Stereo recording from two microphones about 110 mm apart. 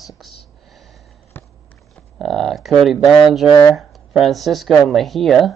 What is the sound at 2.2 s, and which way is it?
Speech, centre (ahead or behind).